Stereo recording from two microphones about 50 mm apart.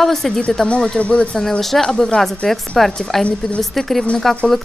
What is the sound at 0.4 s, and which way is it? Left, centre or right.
Speech, centre.